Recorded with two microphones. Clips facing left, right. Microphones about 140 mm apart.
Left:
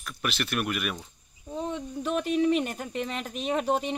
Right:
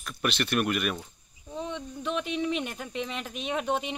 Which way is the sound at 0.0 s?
5° left (ahead or behind).